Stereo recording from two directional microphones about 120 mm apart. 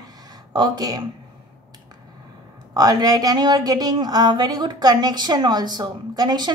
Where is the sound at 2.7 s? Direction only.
30° right (ahead or behind).